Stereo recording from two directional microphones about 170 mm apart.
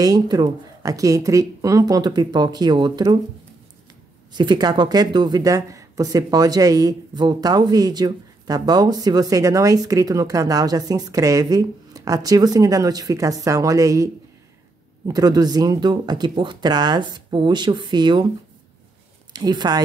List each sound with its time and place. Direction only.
0.0 s speech: 25° right (ahead or behind)
4.3 s speech: 25° right (ahead or behind)
19.3 s speech: 25° right (ahead or behind)